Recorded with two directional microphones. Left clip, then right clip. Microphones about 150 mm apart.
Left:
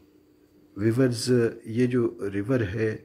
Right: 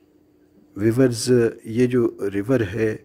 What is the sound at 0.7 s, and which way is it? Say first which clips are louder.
Speech: right 5 dB; 40° right (ahead or behind).